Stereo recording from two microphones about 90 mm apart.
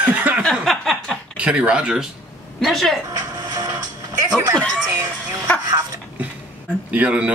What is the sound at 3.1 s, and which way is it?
Television, 45° right (ahead or behind).